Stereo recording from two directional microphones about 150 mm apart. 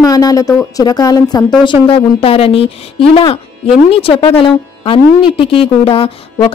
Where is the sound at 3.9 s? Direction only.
40° left (ahead or behind).